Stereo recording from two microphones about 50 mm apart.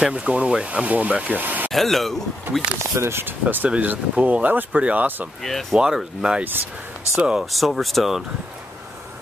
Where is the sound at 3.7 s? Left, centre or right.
Right.